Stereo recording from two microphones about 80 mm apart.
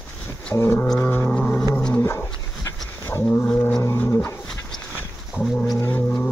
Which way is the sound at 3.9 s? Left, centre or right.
Left.